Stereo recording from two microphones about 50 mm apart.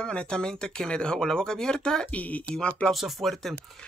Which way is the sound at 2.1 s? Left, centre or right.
Left.